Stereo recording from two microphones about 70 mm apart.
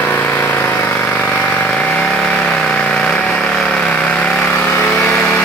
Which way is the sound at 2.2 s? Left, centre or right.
Centre.